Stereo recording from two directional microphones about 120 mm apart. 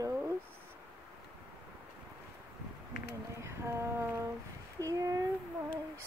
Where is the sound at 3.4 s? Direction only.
20° right (ahead or behind).